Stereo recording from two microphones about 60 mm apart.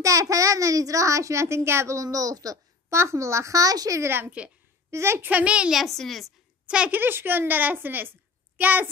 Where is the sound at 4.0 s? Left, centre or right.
Right.